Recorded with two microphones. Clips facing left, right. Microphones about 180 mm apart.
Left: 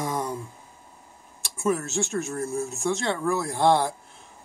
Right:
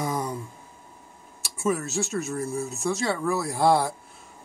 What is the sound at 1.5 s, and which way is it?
Speech, centre (ahead or behind).